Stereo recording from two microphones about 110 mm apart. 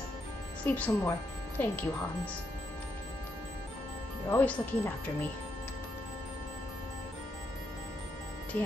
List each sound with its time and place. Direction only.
0.7 s speech: 15° left (ahead or behind)
4.3 s speech: 15° left (ahead or behind)
8.5 s speech: 15° left (ahead or behind)